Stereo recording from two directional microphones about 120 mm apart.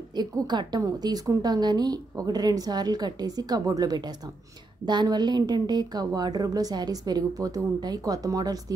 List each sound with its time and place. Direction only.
0.1 s a woman's voice: 40° right (ahead or behind)